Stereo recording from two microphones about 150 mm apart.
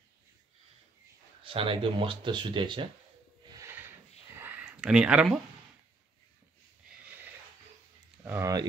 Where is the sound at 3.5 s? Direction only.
15° right (ahead or behind).